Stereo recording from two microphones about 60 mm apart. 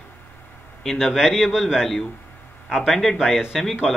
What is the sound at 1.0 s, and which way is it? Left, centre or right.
Speech, centre.